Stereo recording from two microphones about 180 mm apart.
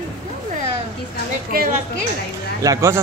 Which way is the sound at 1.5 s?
50° right (ahead or behind).